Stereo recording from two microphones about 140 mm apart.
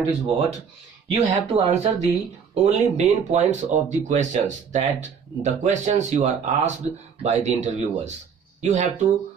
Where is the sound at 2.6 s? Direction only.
55° right (ahead or behind).